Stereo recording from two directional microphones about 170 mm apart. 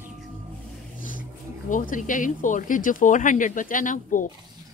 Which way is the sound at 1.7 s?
50° left (ahead or behind).